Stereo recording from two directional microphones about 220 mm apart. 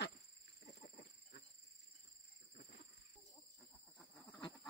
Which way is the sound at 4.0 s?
Centre (ahead or behind).